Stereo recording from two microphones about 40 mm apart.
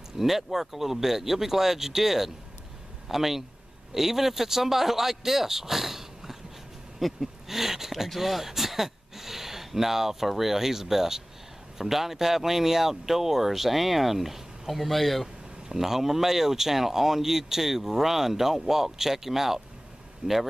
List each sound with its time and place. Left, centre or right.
0.2 s speech: centre
15.7 s speech: centre
20.2 s speech: right